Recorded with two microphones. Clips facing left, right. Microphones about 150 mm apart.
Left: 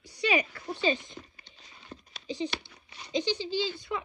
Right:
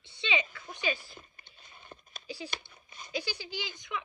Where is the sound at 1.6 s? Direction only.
50° right (ahead or behind).